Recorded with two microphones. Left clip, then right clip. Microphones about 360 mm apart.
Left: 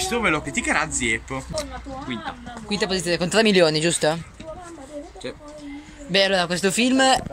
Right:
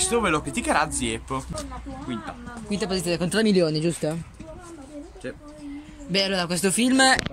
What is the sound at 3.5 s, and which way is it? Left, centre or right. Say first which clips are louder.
Speech: left 5 dB; left.